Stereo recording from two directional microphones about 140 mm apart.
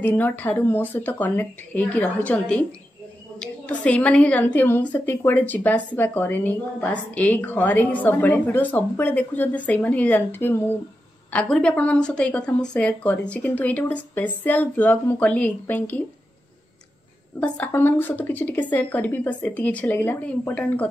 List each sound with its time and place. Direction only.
0.0 s a woman's voice: 15° left (ahead or behind)
17.4 s a woman's voice: 15° left (ahead or behind)